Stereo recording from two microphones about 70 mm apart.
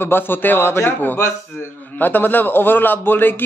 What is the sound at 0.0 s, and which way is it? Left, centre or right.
A man's voice, left.